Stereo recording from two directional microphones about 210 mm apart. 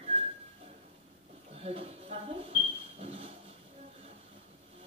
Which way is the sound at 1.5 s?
30° right (ahead or behind).